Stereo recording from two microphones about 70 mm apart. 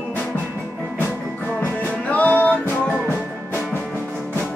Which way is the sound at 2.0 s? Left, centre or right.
Left.